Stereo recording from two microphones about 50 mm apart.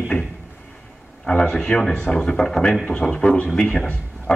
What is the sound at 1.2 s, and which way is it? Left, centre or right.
A man's voice, centre.